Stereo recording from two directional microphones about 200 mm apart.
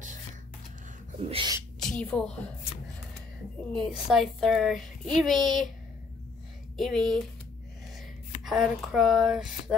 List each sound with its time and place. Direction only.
1.3 s speech: 20° right (ahead or behind)
1.8 s speech: 5° left (ahead or behind)
3.7 s speech: centre (ahead or behind)
6.8 s speech: centre (ahead or behind)
8.5 s speech: centre (ahead or behind)